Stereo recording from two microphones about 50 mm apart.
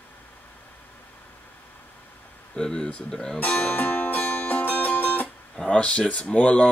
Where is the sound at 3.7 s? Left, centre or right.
Left.